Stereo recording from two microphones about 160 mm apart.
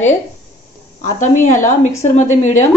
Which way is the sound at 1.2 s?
50° left (ahead or behind).